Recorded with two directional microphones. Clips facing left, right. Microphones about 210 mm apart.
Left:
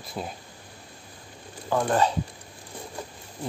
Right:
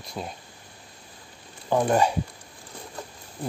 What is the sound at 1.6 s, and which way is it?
Speech, 15° right (ahead or behind).